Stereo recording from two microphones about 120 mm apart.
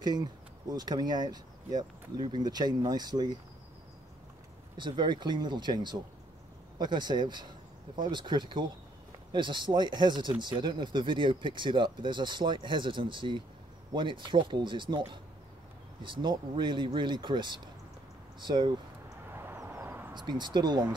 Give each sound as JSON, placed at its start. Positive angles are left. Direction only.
{"t": 0.7, "sound": "speech", "side_deg": -35}
{"t": 4.7, "sound": "speech", "side_deg": -40}
{"t": 19.3, "sound": "vehicle", "side_deg": -20}
{"t": 20.2, "sound": "speech", "side_deg": -40}